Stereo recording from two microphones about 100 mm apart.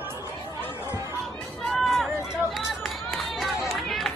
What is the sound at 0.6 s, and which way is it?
Chatter, 25° left (ahead or behind).